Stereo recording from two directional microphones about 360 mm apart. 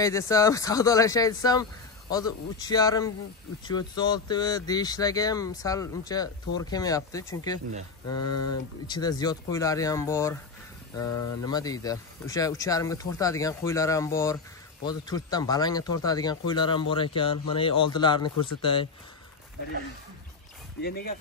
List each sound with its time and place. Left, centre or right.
0.0 s speech: centre
8.3 s speech: left
8.8 s speech: centre
11.1 s speech: left
11.4 s speech: centre